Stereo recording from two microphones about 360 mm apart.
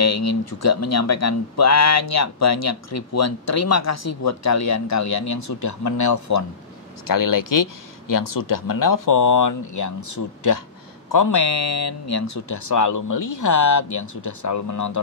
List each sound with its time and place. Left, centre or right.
0.0 s speech: left
7.1 s speech: left